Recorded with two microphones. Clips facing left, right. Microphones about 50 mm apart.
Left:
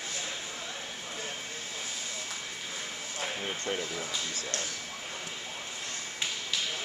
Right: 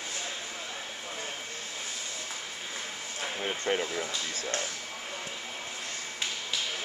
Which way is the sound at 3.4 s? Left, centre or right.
Right.